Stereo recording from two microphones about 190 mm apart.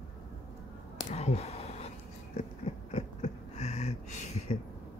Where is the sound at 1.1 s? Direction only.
35° left (ahead or behind).